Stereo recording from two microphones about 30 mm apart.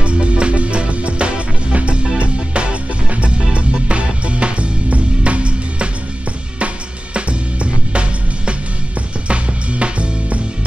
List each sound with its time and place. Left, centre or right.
0.0 s music: right
7.2 s music: right